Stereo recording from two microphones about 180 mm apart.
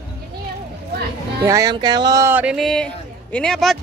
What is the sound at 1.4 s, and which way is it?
Music, 20° right (ahead or behind).